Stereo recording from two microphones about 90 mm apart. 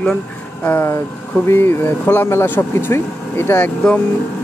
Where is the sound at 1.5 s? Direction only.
25° left (ahead or behind).